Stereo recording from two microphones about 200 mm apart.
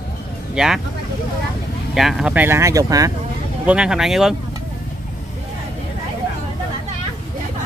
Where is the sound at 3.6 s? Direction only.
5° right (ahead or behind).